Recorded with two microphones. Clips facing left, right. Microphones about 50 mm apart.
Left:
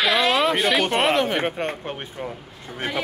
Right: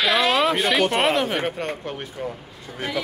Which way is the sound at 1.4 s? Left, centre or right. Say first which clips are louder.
Left 1 dB; left.